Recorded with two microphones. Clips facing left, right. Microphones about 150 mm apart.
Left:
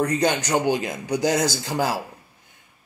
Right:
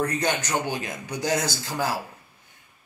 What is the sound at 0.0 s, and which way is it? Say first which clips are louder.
Speech: left 4 dB; 20° left (ahead or behind).